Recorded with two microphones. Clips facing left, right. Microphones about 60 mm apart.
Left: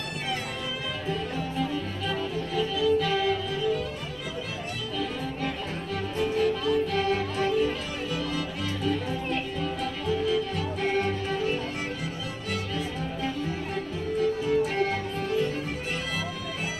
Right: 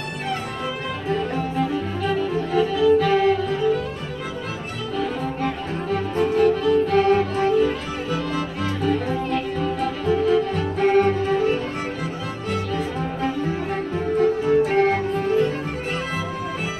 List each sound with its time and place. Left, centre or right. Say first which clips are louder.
1.0 s music: right 8 dB; right
4.9 s music: right 7 dB; right